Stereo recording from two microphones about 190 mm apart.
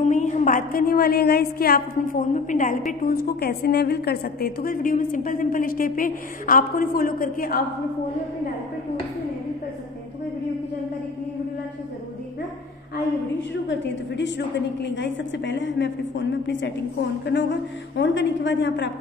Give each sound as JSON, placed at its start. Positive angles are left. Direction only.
{"t": 0.0, "sound": "a woman's voice", "side_deg": 40}
{"t": 2.9, "sound": "a woman's voice", "side_deg": 55}
{"t": 13.4, "sound": "a woman's voice", "side_deg": 70}